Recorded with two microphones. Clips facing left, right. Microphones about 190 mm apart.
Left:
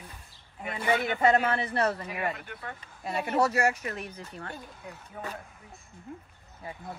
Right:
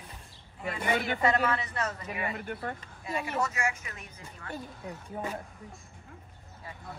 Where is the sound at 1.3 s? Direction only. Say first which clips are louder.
Left 3 dB; 30° left (ahead or behind).